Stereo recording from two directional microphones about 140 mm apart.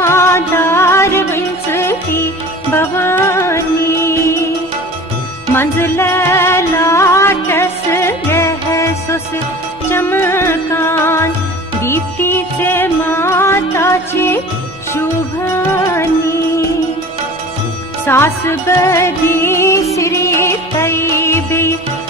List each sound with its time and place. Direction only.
0.0 s music: 20° left (ahead or behind)
5.5 s music: 15° left (ahead or behind)
18.0 s speech: 15° left (ahead or behind)
18.9 s music: 20° left (ahead or behind)